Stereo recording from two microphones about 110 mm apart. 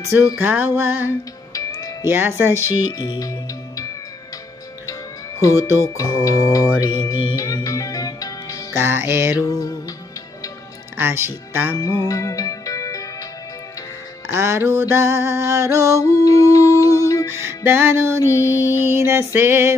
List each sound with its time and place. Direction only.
0.4 s music: 15° right (ahead or behind)
1.5 s music: 30° left (ahead or behind)
2.0 s music: 20° right (ahead or behind)
2.9 s music: 40° left (ahead or behind)
5.4 s music: 30° left (ahead or behind)
8.7 s music: 20° right (ahead or behind)
9.5 s music: 30° left (ahead or behind)
11.0 s speech: 20° right (ahead or behind)
11.7 s music: 30° left (ahead or behind)
14.3 s music: 25° right (ahead or behind)
16.0 s music: 30° left (ahead or behind)
17.3 s music: 20° right (ahead or behind)
18.2 s music: 25° left (ahead or behind)
18.9 s music: 20° right (ahead or behind)